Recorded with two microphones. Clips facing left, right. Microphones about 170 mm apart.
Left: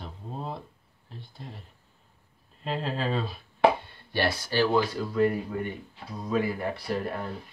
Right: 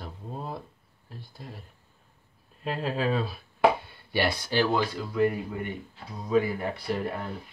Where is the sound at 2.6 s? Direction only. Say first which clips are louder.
Right 2 dB; 5° right (ahead or behind).